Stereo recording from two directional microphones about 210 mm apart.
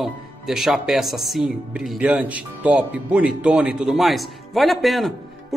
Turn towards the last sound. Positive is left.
turn(degrees=0)  # may be behind; listen again after turning